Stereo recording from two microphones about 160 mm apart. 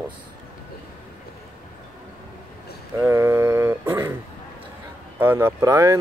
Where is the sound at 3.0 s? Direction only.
15° right (ahead or behind).